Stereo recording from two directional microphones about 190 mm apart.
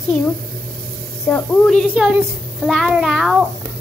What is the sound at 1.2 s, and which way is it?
A woman's voice, 5° left (ahead or behind).